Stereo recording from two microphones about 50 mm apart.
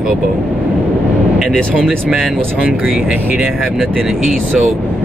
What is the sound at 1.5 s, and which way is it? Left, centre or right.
Speech, centre.